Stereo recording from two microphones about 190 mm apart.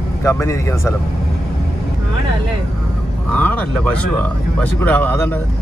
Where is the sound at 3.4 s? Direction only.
10° left (ahead or behind).